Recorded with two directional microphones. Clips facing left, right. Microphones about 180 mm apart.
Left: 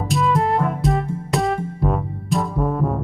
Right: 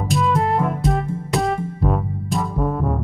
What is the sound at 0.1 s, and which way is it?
Music, centre (ahead or behind).